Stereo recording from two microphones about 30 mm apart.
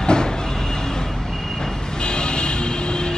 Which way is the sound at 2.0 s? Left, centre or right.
Left.